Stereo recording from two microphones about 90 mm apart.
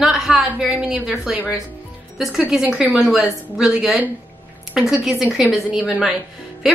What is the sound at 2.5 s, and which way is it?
A woman's voice, 5° right (ahead or behind).